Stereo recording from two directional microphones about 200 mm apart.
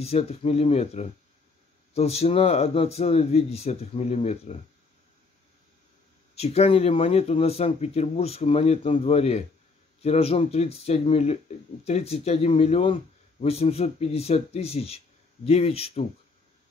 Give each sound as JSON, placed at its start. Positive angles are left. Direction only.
{"t": 0.0, "sound": "speech", "side_deg": 30}
{"t": 6.3, "sound": "speech", "side_deg": 30}